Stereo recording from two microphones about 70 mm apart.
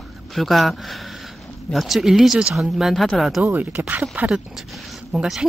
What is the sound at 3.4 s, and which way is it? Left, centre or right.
Speech, right.